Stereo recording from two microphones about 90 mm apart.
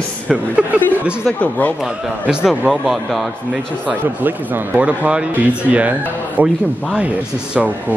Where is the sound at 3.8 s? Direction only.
20° right (ahead or behind).